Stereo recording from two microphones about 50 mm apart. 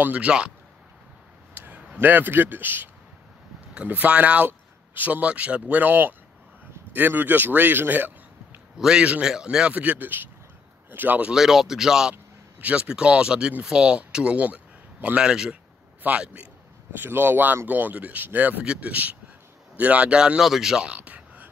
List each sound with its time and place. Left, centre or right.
0.0 s speech: right
1.5 s a sound: right
2.0 s speech: right
8.7 s a man's voice: centre
9.7 s speech: right
11.3 s speech: centre
12.5 s speech: right
15.1 s speech: centre
16.0 s speech: right
16.9 s speech: right
18.6 s speech: right
20.3 s speech: centre
20.9 s a sound: right